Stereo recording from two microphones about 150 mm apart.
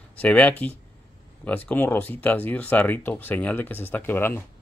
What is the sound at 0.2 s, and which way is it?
Speech, 10° left (ahead or behind).